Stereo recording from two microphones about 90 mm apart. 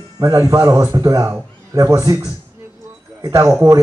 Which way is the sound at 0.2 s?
35° right (ahead or behind).